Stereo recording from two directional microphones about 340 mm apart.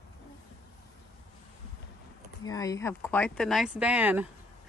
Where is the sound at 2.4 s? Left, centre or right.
Centre.